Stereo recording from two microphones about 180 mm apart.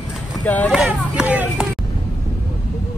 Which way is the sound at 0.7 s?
5° right (ahead or behind).